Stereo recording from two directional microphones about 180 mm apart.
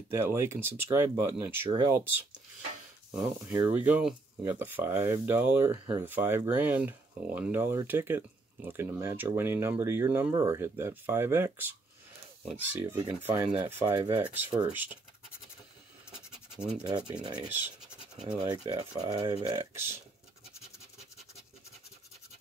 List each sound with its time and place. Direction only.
0.1 s speech: 15° right (ahead or behind)
12.8 s speech: 15° right (ahead or behind)
16.1 s scratch: 5° right (ahead or behind)
17.2 s speech: 25° right (ahead or behind)
17.5 s scratch: 10° right (ahead or behind)
18.4 s speech: 20° right (ahead or behind)